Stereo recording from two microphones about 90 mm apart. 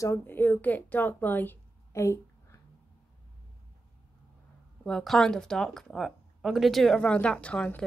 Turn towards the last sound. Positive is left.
turn(degrees=15)  # may be behind; listen again after turning